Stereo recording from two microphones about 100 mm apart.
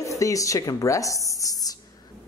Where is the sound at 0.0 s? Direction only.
35° left (ahead or behind).